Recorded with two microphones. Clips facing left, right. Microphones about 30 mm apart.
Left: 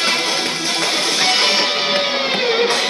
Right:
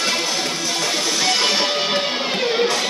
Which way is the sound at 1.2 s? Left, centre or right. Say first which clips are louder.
Left 3 dB; left.